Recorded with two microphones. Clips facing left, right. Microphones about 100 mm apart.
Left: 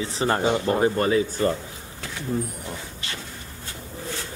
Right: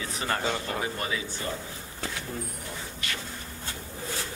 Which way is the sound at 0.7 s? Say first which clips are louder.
Left 11 dB; 40° left (ahead or behind).